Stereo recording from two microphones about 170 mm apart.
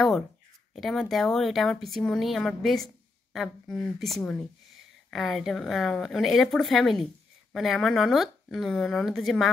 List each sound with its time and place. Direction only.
0.7 s speech: centre (ahead or behind)